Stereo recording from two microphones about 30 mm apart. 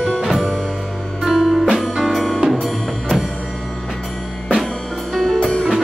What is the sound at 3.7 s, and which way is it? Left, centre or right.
Music, centre.